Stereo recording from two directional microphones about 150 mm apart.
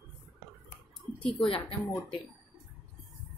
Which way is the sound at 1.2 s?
35° left (ahead or behind).